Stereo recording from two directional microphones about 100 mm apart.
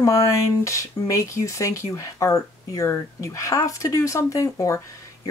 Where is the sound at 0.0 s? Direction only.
35° left (ahead or behind).